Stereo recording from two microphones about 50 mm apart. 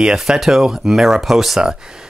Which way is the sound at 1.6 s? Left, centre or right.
Centre.